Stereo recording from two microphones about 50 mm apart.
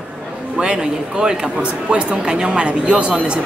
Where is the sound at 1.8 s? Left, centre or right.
Centre.